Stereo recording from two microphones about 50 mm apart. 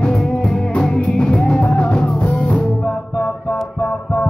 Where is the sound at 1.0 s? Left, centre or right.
Centre.